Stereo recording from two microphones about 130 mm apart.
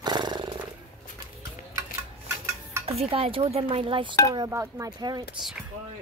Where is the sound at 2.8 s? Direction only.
50° right (ahead or behind).